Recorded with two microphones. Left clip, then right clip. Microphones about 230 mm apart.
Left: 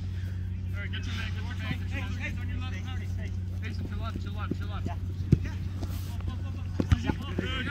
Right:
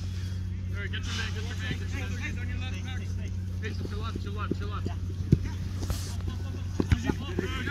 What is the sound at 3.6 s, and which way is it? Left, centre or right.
Vehicle, left.